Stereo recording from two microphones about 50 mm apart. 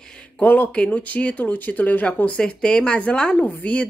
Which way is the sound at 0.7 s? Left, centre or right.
Left.